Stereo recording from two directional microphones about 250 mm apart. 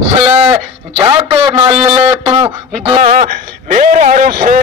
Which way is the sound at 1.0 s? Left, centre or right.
Centre.